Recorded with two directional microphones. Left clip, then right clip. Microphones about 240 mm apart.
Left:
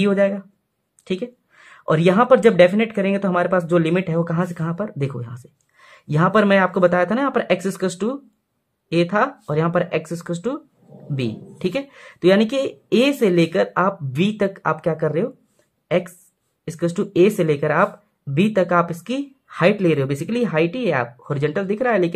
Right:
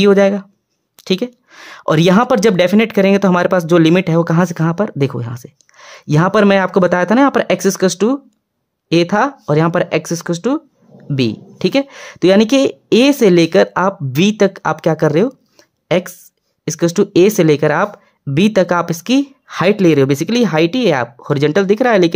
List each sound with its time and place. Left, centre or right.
0.0 s speech: right